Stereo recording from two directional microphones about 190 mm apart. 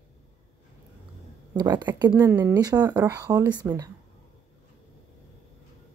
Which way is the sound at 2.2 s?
10° right (ahead or behind).